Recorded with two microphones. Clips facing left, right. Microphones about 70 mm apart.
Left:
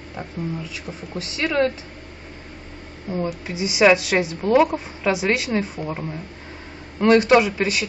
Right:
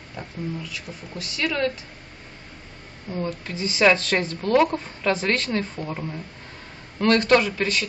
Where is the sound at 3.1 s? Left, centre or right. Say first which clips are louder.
Left 3 dB; centre.